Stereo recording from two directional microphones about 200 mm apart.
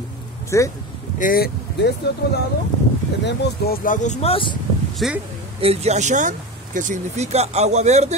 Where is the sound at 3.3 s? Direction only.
55° left (ahead or behind); by 4.6 s 25° left (ahead or behind).